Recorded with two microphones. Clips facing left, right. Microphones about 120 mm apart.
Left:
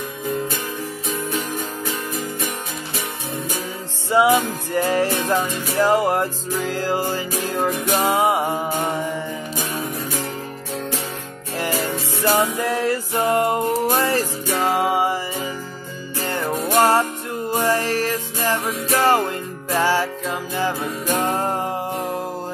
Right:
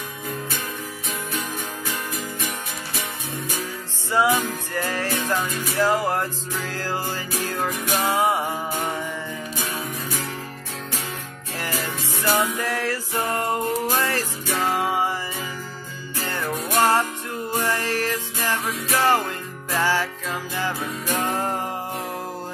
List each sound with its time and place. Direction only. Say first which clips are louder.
4.1 s music: left 4 dB; 15° left (ahead or behind)
12.2 s music: left 3 dB; 15° left (ahead or behind)
16.3 s music: left 4 dB; 20° left (ahead or behind)